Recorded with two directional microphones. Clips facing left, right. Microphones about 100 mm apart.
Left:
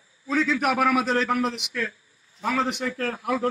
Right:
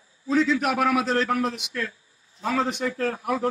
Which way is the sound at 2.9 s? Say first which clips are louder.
Right 1 dB; 25° right (ahead or behind).